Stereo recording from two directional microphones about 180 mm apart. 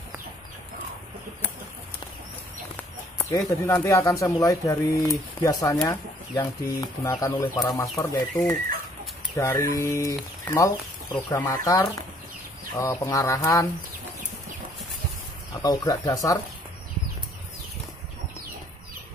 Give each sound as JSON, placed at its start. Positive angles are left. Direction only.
{"t": 3.2, "sound": "speech", "side_deg": 15}
{"t": 15.6, "sound": "speech", "side_deg": 20}